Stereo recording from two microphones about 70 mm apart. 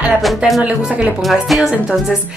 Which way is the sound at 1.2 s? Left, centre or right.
Centre.